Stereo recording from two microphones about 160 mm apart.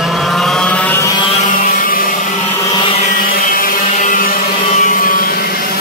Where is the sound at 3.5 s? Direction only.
55° left (ahead or behind).